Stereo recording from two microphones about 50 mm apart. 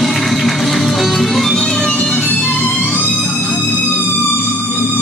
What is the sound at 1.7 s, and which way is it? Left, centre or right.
Music, centre.